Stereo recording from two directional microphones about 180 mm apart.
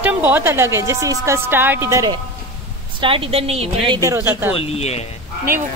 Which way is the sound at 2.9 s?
30° right (ahead or behind).